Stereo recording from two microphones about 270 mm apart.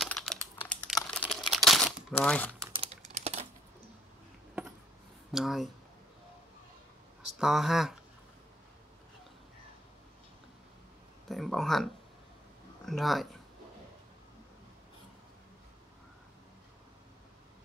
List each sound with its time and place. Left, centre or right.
0.0 s computer keyboard: centre
1.1 s typing: centre
2.6 s typing: centre
5.3 s speech: centre
7.2 s speech: centre
11.2 s speech: centre